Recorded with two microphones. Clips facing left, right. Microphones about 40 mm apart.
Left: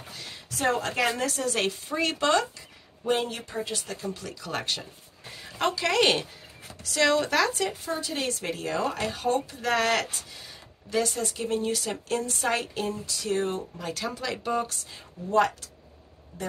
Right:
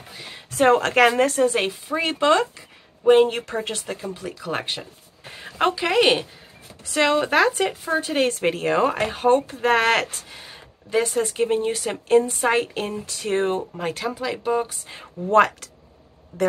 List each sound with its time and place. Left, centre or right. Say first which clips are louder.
0.1 s a sound: right 4 dB; right
0.6 s speech: right 10 dB; right
1.4 s speech: right 7 dB; centre
3.4 s speech: right 6 dB; right
3.7 s speech: right 4 dB; right
4.0 s speech: right 4 dB; centre
5.3 s a woman's voice: right 6 dB; right; by 6.2 s centre
6.8 s speech: right 4 dB; right
14.0 s speech: right 4 dB; centre
15.2 s speech: right 6 dB; right